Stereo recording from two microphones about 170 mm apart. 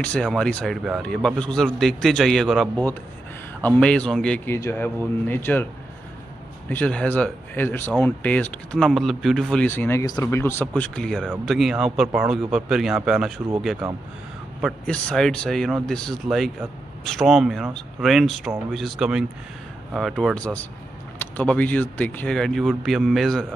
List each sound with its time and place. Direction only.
0.0 s a man's voice: 5° left (ahead or behind)
6.7 s a man's voice: 5° left (ahead or behind)
14.9 s a man's voice: 5° left (ahead or behind)